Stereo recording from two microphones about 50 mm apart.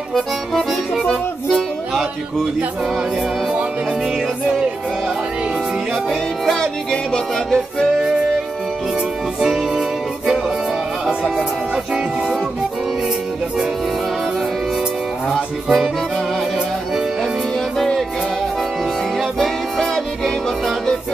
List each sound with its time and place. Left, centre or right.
0.1 s accordion: centre
6.0 s music: centre
9.4 s music: centre
11.7 s music: centre
15.3 s music: centre
19.3 s music: centre